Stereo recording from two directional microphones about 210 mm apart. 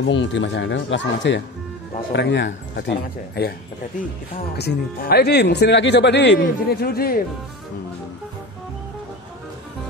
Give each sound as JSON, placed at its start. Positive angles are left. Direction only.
{"t": 0.0, "sound": "speech", "side_deg": 60}
{"t": 4.6, "sound": "speech", "side_deg": 50}